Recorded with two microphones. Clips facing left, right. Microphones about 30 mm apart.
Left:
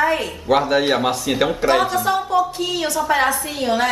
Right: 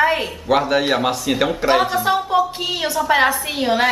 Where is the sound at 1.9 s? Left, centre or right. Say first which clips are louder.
Right 1 dB; right.